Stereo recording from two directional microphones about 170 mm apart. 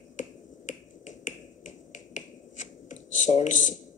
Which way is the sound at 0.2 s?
45° left (ahead or behind).